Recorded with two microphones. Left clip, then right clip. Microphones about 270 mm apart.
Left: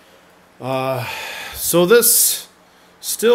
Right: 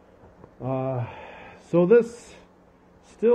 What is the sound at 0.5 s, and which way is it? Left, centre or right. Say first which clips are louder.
Speech: left 8 dB; centre.